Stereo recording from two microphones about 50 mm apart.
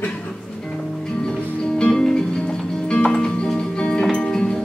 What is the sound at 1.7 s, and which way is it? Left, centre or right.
Music, centre.